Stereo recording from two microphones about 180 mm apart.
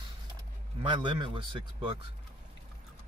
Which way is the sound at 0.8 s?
25° right (ahead or behind).